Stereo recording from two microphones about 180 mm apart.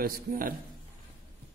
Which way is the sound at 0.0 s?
50° right (ahead or behind).